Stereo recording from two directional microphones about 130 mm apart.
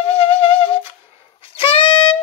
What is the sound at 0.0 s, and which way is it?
Music, 45° left (ahead or behind).